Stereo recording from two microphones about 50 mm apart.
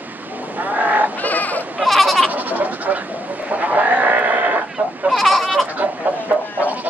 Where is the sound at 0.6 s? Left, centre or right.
Right.